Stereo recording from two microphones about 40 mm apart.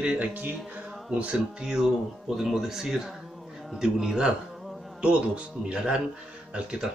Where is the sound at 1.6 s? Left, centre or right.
Centre.